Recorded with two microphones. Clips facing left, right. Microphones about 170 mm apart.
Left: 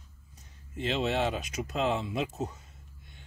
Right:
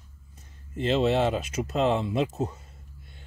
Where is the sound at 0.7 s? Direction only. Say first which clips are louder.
Right 6 dB; 40° right (ahead or behind).